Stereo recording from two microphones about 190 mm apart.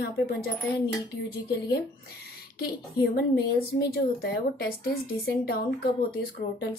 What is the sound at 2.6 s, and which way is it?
A woman's voice, 55° left (ahead or behind).